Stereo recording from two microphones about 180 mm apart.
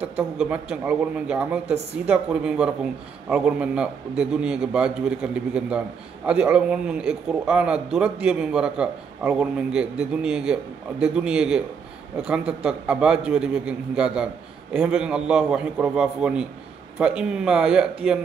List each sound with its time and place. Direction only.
0.2 s a man's voice: 5° right (ahead or behind)